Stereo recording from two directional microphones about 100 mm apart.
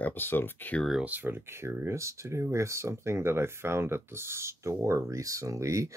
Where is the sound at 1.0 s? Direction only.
20° right (ahead or behind).